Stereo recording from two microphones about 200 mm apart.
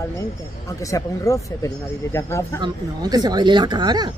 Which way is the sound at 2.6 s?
20° right (ahead or behind).